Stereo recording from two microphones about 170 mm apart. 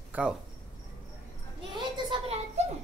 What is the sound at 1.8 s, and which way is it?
Speech, 35° right (ahead or behind).